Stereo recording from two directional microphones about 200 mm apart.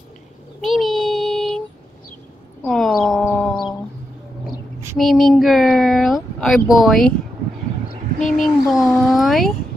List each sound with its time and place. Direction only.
0.6 s child singing: centre (ahead or behind)
2.6 s a sound: centre (ahead or behind)
4.9 s speech: centre (ahead or behind)
8.2 s a child's voice: centre (ahead or behind)